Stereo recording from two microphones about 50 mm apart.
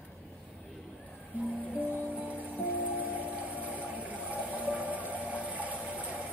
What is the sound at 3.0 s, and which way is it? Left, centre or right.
Vehicle, right.